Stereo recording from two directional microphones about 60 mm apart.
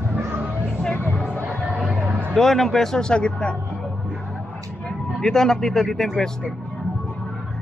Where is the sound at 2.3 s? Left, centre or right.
Centre.